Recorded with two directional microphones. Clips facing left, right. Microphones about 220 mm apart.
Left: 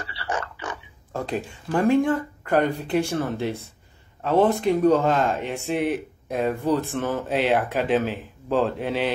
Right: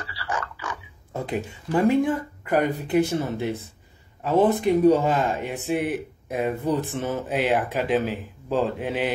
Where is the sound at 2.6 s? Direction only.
20° right (ahead or behind).